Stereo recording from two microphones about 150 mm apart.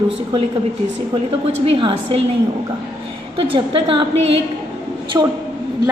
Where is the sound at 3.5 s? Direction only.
35° right (ahead or behind).